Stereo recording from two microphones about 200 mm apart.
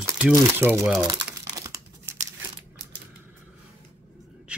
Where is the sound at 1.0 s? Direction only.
20° right (ahead or behind).